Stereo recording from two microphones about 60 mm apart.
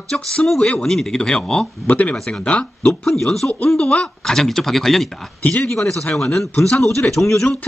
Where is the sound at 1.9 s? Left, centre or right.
Left.